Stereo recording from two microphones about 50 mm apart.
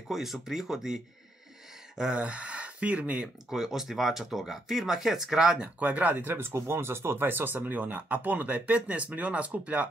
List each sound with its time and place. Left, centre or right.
0.1 s speech: centre; by 3.3 s right
3.4 s speech: centre
5.8 s speech: right
6.3 s speech: right